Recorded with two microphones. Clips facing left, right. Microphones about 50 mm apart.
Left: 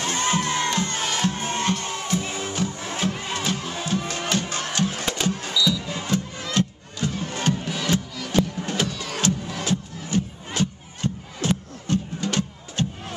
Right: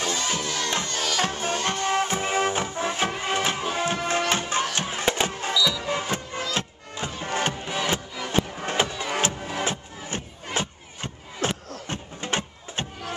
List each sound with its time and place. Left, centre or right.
0.0 s crowd: left
0.8 s music: left
1.7 s music: right